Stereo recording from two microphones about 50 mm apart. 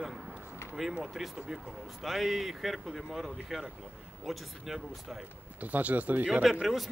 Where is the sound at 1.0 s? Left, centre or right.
Centre.